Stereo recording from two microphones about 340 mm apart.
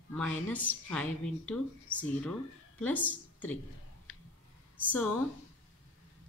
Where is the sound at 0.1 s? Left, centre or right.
Centre.